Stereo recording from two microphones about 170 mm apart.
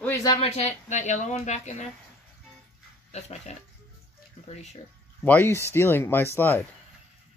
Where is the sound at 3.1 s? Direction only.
40° left (ahead or behind).